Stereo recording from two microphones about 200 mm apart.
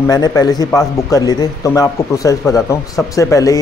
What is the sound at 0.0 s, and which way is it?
A man's voice, 20° left (ahead or behind).